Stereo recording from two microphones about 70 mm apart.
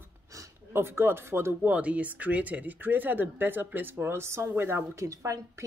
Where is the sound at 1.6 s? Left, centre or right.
Right.